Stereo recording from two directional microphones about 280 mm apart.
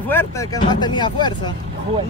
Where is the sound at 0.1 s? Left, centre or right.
Centre.